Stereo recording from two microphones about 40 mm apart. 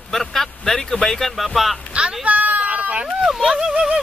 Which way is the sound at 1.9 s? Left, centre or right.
Right.